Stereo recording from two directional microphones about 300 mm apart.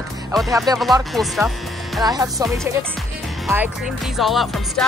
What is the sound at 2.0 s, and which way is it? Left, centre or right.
Speech, centre.